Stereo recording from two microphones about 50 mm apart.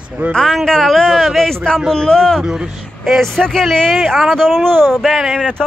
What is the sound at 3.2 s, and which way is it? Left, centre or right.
Speech, centre.